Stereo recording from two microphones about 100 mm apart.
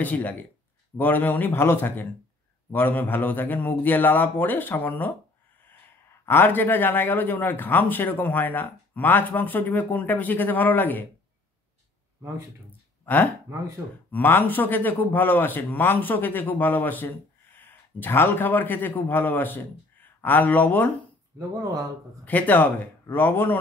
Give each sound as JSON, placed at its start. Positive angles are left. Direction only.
{"t": 0.0, "sound": "a man's voice", "side_deg": 15}
{"t": 6.2, "sound": "a man's voice", "side_deg": 20}
{"t": 13.0, "sound": "a man's voice", "side_deg": 20}
{"t": 21.4, "sound": "speech", "side_deg": -35}
{"t": 22.2, "sound": "a man's voice", "side_deg": 15}